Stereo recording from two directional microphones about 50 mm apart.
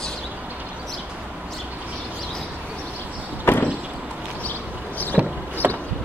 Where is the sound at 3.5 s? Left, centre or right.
Left.